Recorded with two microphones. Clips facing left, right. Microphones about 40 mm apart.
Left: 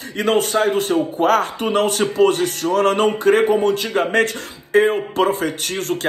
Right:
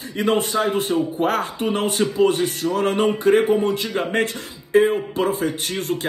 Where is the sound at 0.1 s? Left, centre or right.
Left.